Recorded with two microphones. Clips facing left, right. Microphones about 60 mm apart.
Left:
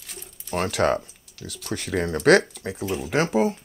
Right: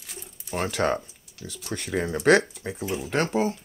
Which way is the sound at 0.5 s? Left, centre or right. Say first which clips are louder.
Left 3 dB; centre.